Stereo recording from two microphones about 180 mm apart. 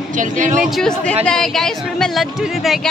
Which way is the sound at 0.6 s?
Centre (ahead or behind).